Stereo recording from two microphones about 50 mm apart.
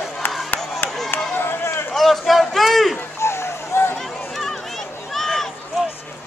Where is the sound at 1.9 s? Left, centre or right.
Centre.